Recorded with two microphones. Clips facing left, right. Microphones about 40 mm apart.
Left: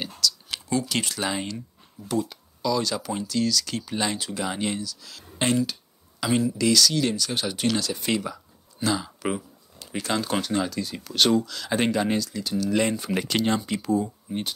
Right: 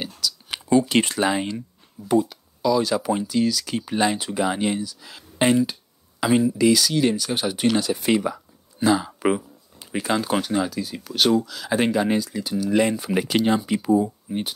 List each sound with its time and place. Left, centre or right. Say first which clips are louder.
0.0 s computer keyboard: left 1 dB; centre
1.3 s speech: right 5 dB; centre